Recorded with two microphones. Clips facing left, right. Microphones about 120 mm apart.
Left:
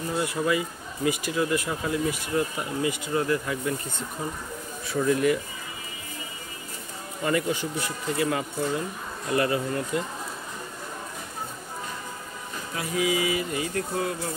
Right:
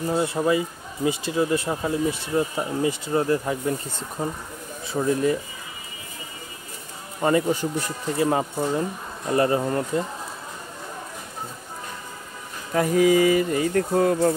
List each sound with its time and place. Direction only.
0.1 s speech: 30° right (ahead or behind)
4.9 s speech: 30° right (ahead or behind)
7.2 s speech: 35° right (ahead or behind)
12.7 s speech: 45° right (ahead or behind)